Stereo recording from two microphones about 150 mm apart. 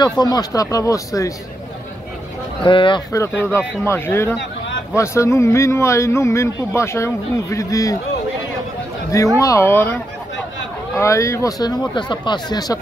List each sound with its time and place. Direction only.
0.0 s speech: 25° left (ahead or behind)
2.6 s speech: 35° left (ahead or behind)
3.1 s speech: 15° left (ahead or behind)
9.4 s speech: 20° left (ahead or behind)
11.0 s speech: 20° left (ahead or behind)